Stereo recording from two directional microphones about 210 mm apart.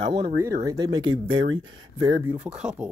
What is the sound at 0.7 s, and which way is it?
Speech, 20° right (ahead or behind).